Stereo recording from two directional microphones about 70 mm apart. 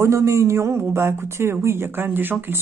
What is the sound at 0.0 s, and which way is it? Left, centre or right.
Speech, right.